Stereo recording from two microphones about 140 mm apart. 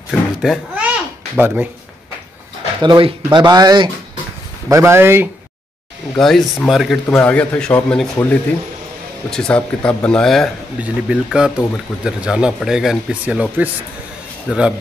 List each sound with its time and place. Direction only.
0.1 s a sound: centre (ahead or behind)
1.3 s speech: 10° right (ahead or behind)
2.8 s speech: 35° right (ahead or behind); by 5.3 s 15° right (ahead or behind)
6.1 s speech: 5° left (ahead or behind)
7.1 s speech: 10° left (ahead or behind); by 14.6 s 5° right (ahead or behind)